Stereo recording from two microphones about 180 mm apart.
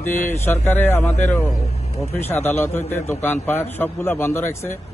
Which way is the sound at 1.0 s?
40° left (ahead or behind).